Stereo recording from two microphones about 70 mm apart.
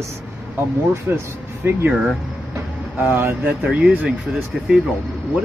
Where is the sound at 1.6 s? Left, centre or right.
Right.